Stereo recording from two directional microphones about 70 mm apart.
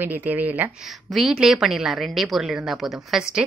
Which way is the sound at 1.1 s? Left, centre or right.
Centre.